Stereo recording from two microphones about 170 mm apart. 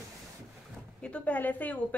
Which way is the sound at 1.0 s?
5° left (ahead or behind).